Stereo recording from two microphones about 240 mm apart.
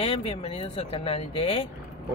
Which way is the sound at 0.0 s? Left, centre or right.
Left.